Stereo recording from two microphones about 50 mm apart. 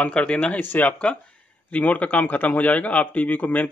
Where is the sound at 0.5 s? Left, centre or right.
Left.